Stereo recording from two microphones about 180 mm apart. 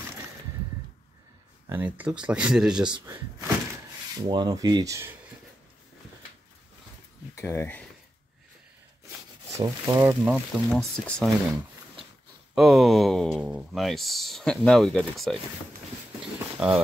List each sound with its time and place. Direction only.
1.7 s speech: 10° right (ahead or behind)
4.2 s speech: 20° right (ahead or behind)
7.3 s speech: 15° left (ahead or behind)
9.8 s speech: 15° right (ahead or behind)
10.7 s speech: 5° left (ahead or behind)
12.5 s speech: centre (ahead or behind)
16.3 s a sound: 10° right (ahead or behind)